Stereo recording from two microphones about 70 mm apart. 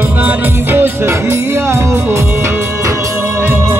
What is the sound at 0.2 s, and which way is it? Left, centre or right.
Music, right.